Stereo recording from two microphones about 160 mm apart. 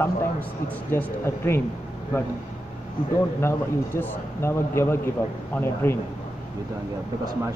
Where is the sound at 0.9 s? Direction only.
15° left (ahead or behind).